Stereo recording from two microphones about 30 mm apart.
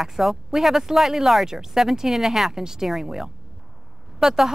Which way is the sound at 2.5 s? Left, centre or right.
Centre.